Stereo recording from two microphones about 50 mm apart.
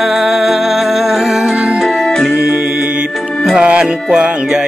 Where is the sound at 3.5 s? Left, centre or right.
Centre.